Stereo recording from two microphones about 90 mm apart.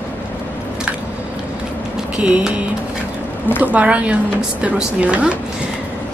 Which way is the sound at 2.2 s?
10° right (ahead or behind).